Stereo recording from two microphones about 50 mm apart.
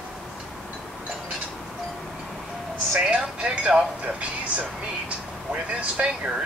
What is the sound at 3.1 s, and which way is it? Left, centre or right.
Music, right.